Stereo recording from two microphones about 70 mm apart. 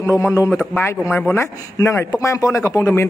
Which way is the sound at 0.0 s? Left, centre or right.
Left.